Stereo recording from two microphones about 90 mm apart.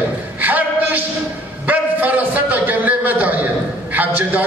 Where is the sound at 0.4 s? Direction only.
20° right (ahead or behind).